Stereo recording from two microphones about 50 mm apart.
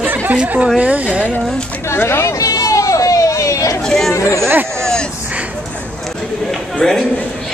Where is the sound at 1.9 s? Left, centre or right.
Left.